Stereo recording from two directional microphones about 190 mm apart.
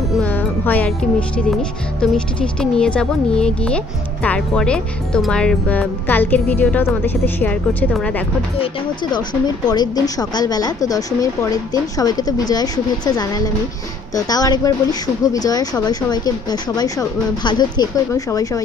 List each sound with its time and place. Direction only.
0.2 s speech: 10° left (ahead or behind)
9.1 s a woman's voice: 20° left (ahead or behind)